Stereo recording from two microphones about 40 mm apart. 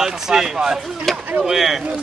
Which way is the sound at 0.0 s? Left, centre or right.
Centre.